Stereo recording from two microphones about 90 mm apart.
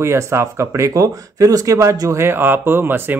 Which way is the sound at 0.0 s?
30° right (ahead or behind).